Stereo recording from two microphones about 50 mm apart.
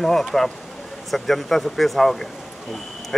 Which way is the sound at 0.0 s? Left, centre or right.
Centre.